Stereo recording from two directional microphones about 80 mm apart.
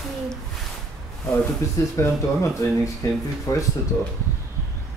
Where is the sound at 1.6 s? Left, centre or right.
Left.